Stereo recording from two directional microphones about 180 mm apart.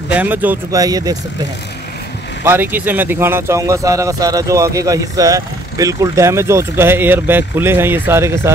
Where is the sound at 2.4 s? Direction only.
10° right (ahead or behind).